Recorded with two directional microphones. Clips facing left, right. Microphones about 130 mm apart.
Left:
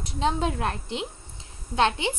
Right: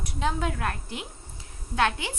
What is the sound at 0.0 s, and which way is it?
A woman's voice, 25° left (ahead or behind).